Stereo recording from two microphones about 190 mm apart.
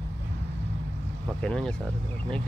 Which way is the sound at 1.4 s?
5° left (ahead or behind).